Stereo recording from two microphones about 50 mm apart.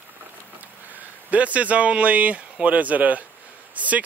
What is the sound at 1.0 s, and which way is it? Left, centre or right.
A man's voice, right.